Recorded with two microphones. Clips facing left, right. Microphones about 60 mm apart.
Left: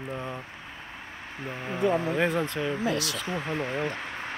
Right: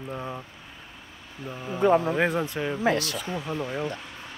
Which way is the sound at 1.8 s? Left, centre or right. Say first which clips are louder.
Right 5 dB; right.